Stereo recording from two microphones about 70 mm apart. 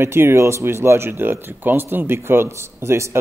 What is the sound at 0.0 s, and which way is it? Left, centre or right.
Speech, right.